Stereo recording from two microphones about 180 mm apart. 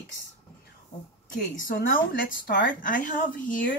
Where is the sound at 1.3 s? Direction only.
50° left (ahead or behind).